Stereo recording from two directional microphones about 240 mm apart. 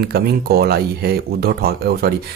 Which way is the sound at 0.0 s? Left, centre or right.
Right.